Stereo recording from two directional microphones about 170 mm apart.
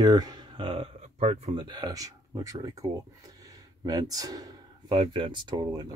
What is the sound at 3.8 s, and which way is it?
Speech, 20° right (ahead or behind).